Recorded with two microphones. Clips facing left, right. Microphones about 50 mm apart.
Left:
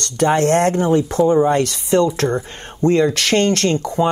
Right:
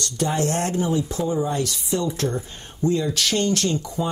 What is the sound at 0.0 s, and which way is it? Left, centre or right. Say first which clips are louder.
Speech: left 8 dB; left.